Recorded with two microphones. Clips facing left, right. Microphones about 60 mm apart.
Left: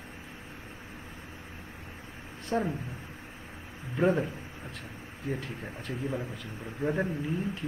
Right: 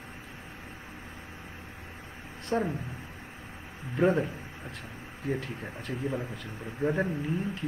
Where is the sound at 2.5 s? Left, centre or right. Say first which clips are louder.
Right 1 dB; centre.